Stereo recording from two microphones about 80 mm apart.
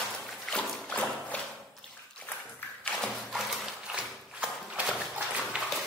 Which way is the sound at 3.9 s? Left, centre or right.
Centre.